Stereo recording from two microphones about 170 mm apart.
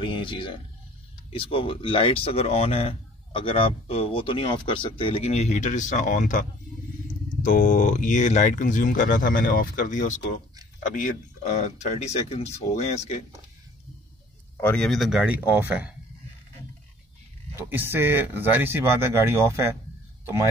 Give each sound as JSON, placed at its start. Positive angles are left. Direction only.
{"t": 0.0, "sound": "speech", "side_deg": 30}
{"t": 14.6, "sound": "speech", "side_deg": 5}
{"t": 17.6, "sound": "speech", "side_deg": -10}